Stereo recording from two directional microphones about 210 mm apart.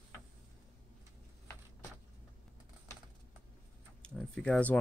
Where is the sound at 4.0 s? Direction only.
5° left (ahead or behind).